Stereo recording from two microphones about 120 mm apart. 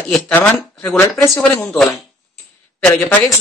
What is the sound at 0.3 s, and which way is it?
Speech, 15° left (ahead or behind).